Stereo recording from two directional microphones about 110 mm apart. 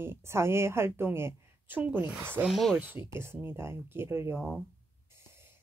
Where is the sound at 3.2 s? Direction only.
20° right (ahead or behind).